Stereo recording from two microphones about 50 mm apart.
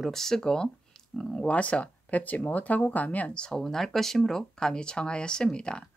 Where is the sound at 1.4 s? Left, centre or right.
Left.